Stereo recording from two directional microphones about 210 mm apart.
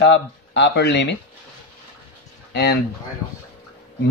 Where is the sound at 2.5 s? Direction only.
50° left (ahead or behind).